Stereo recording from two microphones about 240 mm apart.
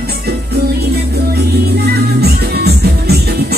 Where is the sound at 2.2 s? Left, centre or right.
Right.